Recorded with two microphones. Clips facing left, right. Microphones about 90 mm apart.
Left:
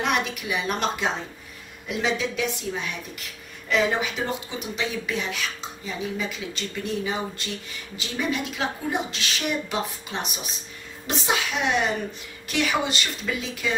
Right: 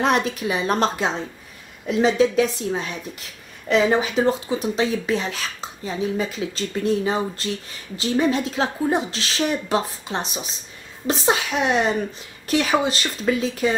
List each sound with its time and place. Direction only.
0.0 s speech: 35° right (ahead or behind)